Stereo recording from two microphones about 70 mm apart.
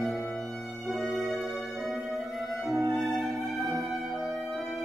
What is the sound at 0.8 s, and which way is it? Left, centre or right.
Music, centre.